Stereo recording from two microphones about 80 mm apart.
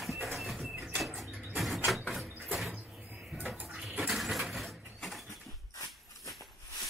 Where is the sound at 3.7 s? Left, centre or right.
Centre.